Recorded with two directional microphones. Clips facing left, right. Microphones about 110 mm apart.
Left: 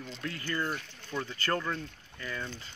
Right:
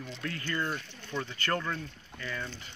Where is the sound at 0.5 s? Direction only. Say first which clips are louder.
Left 1 dB; 10° left (ahead or behind).